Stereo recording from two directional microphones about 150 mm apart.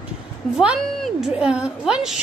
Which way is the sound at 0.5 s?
Centre (ahead or behind).